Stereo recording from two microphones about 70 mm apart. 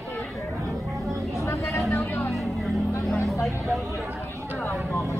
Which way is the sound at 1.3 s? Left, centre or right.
Left.